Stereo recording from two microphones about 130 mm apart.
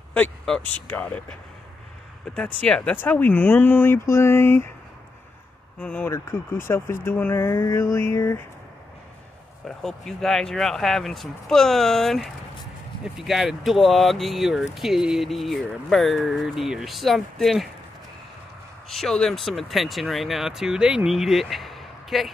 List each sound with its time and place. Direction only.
0.1 s speech: 10° left (ahead or behind)
2.3 s speech: 10° left (ahead or behind)
5.8 s speech: 10° left (ahead or behind)
9.7 s speech: 5° left (ahead or behind)
18.9 s speech: 5° left (ahead or behind)